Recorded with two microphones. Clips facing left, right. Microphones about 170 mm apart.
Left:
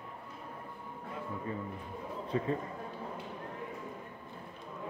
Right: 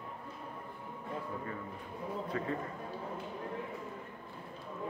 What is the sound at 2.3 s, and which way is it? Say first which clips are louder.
Speech: left 6 dB; 25° left (ahead or behind).